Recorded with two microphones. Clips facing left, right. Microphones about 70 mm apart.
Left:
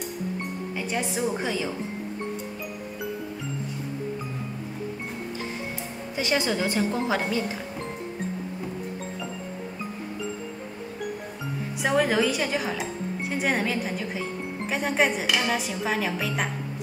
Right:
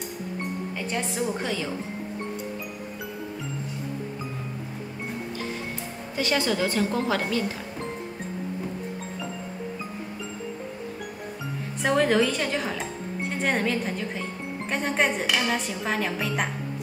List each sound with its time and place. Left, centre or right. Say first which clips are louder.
0.4 s speech: even; centre
6.1 s a woman's voice: right 1 dB; centre
11.8 s speech: right 1 dB; centre